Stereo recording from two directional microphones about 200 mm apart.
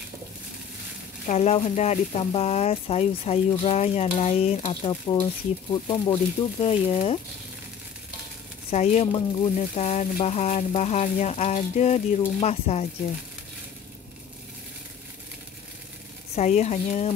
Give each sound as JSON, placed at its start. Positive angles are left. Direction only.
{"t": 1.2, "sound": "speech", "side_deg": 35}
{"t": 8.6, "sound": "speech", "side_deg": 35}
{"t": 16.3, "sound": "speech", "side_deg": 35}